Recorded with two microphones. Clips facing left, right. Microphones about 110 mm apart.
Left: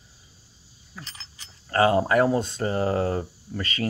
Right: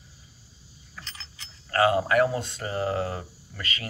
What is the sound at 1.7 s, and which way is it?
Speech, 30° left (ahead or behind).